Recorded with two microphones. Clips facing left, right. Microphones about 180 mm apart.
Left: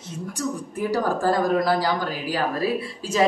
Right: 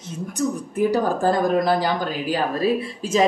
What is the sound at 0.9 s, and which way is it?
A woman's voice, 20° right (ahead or behind).